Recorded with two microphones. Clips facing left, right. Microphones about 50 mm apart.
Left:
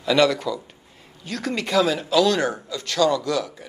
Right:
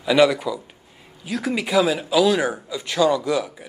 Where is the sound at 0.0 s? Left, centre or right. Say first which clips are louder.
Right 2 dB; centre.